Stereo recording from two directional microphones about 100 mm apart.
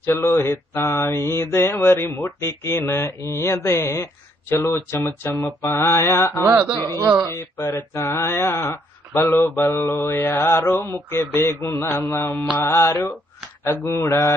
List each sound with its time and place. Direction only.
0.0 s speech: 25° left (ahead or behind)
6.6 s speech: 30° right (ahead or behind)
7.3 s speech: 25° left (ahead or behind)
10.5 s mantra: 35° left (ahead or behind)
10.8 s speech: 20° left (ahead or behind)